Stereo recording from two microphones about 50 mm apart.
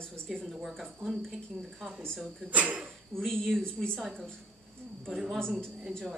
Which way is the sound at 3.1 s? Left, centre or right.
Centre.